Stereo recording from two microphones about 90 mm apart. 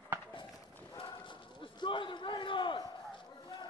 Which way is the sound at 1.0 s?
65° left (ahead or behind).